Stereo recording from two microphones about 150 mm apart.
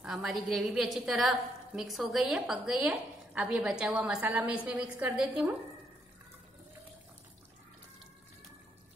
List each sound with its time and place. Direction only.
0.0 s a woman's voice: 5° right (ahead or behind)